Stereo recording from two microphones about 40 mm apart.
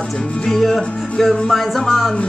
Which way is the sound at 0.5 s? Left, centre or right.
Centre.